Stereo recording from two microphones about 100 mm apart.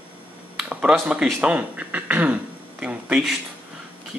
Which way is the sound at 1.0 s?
10° right (ahead or behind).